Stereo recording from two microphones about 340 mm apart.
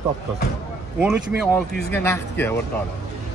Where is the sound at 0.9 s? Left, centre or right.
Centre.